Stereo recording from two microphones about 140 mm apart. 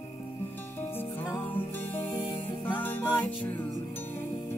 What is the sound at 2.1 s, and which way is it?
Music, 40° left (ahead or behind).